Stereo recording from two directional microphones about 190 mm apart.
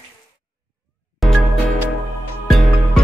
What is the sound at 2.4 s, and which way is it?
Music, centre (ahead or behind).